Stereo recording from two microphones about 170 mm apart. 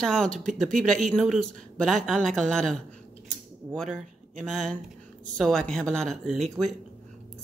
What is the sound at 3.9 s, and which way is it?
Speech, centre (ahead or behind).